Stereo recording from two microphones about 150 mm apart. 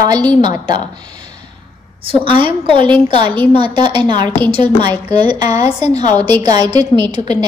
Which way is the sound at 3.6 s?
30° right (ahead or behind).